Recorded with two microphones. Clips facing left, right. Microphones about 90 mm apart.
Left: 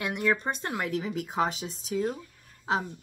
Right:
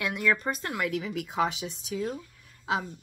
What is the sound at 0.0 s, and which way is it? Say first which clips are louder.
Speech: even; 25° left (ahead or behind).